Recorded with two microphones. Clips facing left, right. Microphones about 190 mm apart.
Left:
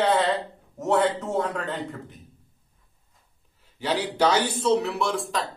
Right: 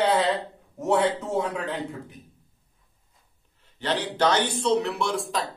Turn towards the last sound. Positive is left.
turn(degrees=0)  # may be behind; listen again after turning